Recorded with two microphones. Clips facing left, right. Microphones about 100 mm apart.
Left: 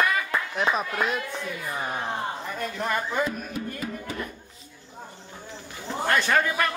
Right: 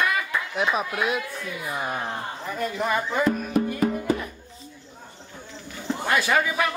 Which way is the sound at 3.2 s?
55° right (ahead or behind).